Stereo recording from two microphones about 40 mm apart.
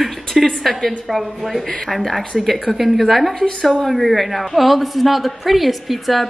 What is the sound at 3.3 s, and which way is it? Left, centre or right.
A woman's voice, centre.